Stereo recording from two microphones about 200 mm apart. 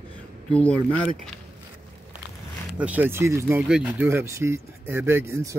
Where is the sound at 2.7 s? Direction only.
5° right (ahead or behind).